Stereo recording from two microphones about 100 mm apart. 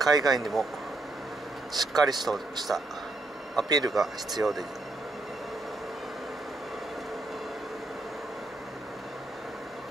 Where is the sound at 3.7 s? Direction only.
40° right (ahead or behind).